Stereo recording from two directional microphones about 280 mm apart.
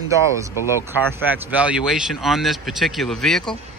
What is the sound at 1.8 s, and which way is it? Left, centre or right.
Speech, centre.